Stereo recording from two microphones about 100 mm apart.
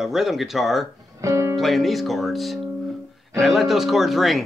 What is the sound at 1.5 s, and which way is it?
Speech, centre (ahead or behind).